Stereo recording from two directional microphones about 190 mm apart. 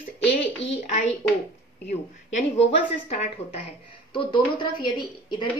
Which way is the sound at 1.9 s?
35° left (ahead or behind).